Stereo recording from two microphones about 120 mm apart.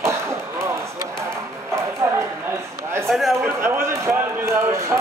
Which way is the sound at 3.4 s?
20° right (ahead or behind).